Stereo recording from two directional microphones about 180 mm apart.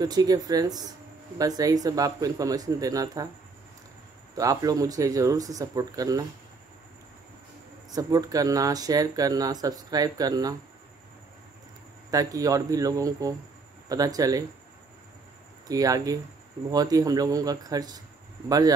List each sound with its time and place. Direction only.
0.0 s speech: 20° right (ahead or behind)
4.4 s speech: 20° right (ahead or behind)
7.9 s speech: 20° right (ahead or behind)
12.1 s speech: 20° right (ahead or behind)
15.7 s speech: 20° right (ahead or behind)